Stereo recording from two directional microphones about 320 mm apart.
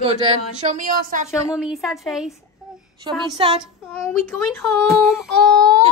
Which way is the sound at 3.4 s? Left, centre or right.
Centre.